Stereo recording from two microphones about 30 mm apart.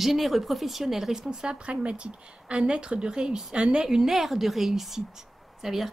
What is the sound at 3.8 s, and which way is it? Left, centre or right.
A woman's voice, centre.